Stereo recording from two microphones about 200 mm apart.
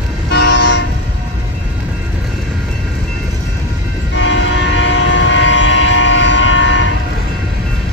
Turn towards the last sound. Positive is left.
turn(degrees=70)  # may be behind; listen again after turning